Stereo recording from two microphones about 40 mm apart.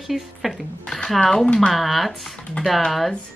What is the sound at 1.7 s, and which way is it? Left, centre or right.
Speech, centre.